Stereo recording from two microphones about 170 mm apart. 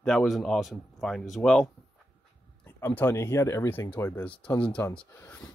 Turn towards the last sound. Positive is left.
turn(degrees=10)  # may be behind; listen again after turning